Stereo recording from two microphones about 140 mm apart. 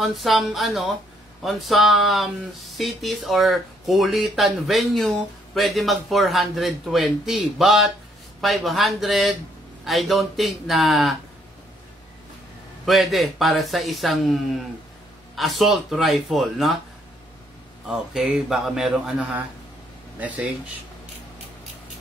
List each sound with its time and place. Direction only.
0.0 s speech: centre (ahead or behind)
12.8 s speech: centre (ahead or behind)
17.8 s speech: 5° right (ahead or behind)